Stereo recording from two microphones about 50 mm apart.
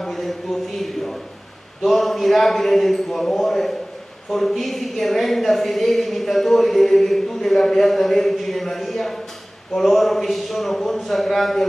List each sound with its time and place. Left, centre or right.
0.0 s a woman's voice: centre